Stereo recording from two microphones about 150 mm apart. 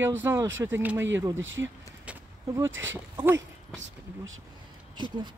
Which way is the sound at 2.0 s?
10° right (ahead or behind).